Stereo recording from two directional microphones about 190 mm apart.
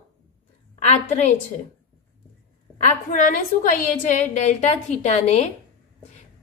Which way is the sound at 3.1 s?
45° left (ahead or behind).